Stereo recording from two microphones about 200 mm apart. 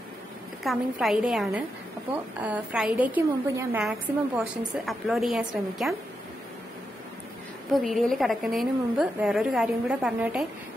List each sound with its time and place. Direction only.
0.7 s a woman's voice: centre (ahead or behind)
7.7 s a woman's voice: centre (ahead or behind)